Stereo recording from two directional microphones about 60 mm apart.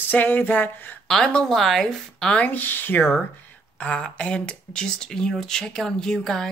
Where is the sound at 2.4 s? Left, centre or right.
Left.